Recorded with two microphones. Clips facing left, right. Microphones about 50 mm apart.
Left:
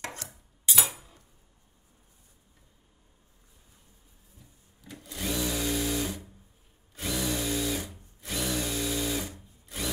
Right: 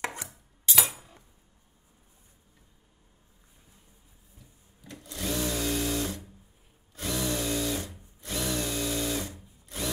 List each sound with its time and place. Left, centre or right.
0.0 s cutlery: centre
0.3 s cutlery: centre
4.8 s sewing machine: centre
7.0 s drill: centre
8.4 s power tool: centre